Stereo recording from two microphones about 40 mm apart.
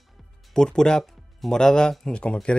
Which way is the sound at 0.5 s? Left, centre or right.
Centre.